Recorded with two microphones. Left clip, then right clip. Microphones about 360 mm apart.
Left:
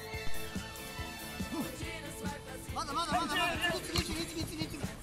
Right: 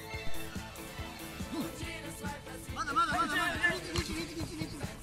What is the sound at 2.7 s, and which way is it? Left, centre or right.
Music, centre.